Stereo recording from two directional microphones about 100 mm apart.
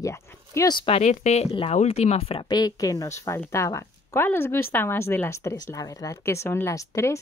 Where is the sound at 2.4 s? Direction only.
40° left (ahead or behind).